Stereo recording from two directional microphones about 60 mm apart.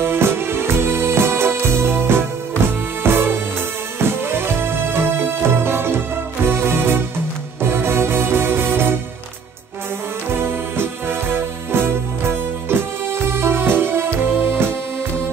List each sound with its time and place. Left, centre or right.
0.0 s music: right
10.3 s music: right